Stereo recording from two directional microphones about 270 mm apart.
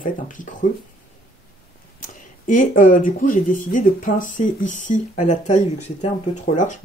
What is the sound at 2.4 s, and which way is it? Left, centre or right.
Speech, left.